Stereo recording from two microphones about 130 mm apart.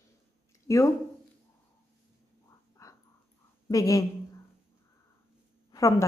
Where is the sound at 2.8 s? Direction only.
25° left (ahead or behind).